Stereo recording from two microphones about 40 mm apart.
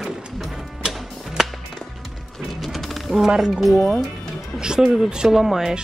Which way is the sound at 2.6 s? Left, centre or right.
Centre.